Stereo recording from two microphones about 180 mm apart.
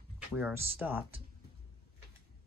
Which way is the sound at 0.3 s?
10° right (ahead or behind).